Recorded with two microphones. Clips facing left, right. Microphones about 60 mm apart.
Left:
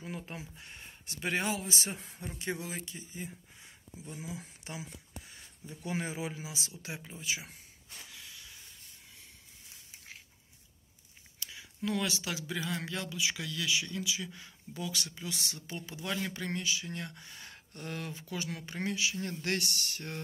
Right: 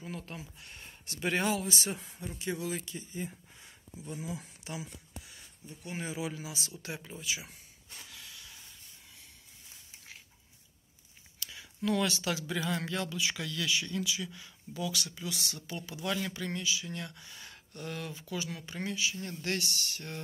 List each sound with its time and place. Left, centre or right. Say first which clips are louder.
0.2 s speech: left 1 dB; left
0.7 s speech: right 4 dB; centre
2.3 s speech: right 1 dB; left
2.6 s speech: right 4 dB; centre
4.6 s a sound: right 3 dB; left
6.0 s speech: right 1 dB; left; by 7.2 s centre
7.2 s speech: left 3 dB; left
8.1 s a sound: even; centre
11.3 s speech: right 1 dB; centre
14.0 s speech: right 1 dB; left
16.3 s speech: even; left